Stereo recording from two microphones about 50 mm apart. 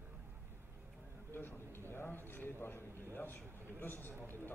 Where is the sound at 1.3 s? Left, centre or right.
Left.